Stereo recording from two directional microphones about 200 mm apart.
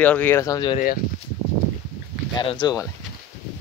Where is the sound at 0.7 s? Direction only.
45° left (ahead or behind).